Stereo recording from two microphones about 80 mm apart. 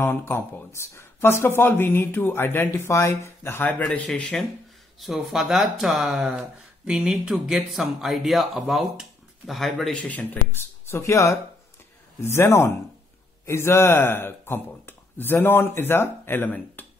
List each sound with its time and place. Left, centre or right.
0.0 s speech: left
3.8 s speech: centre
5.0 s speech: centre
10.0 s speech: left